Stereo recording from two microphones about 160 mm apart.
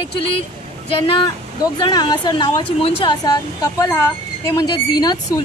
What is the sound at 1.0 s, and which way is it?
Speech, 35° left (ahead or behind).